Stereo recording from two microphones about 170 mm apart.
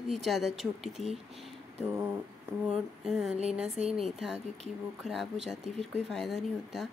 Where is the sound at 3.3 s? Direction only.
40° right (ahead or behind).